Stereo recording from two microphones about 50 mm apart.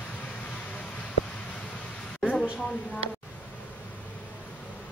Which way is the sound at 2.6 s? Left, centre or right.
Left.